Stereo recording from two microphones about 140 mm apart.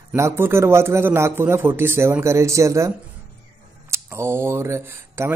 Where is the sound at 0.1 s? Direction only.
20° right (ahead or behind).